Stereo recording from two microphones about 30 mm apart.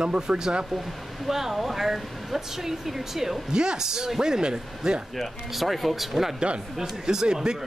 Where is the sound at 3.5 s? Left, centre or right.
Right.